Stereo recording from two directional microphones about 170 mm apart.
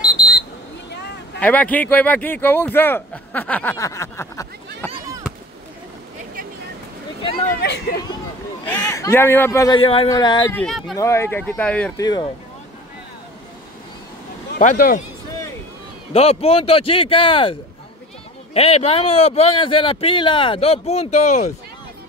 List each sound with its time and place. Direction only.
0.0 s smoke detector: 25° left (ahead or behind)
1.4 s speech: 10° left (ahead or behind)
7.6 s speech: 70° left (ahead or behind)
8.7 s a man's voice: 20° left (ahead or behind)
9.8 s speech: 35° left (ahead or behind)
10.5 s speech: 5° left (ahead or behind)
11.0 s speech: 15° left (ahead or behind)
12.0 s speech: 25° left (ahead or behind)
14.6 s speech: 50° left (ahead or behind)
16.1 s speech: 35° left (ahead or behind)